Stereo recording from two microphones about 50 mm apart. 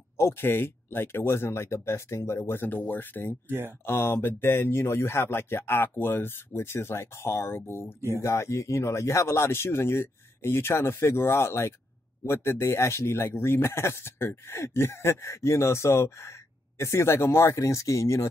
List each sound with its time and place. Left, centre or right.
0.2 s speech: left
3.4 s speech: right
3.8 s speech: left
8.2 s a man's voice: left